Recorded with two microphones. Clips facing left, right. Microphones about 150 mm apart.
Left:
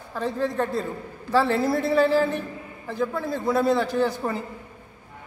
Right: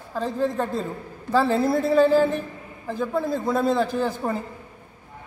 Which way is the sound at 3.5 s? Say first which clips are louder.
Left 1 dB; 5° right (ahead or behind).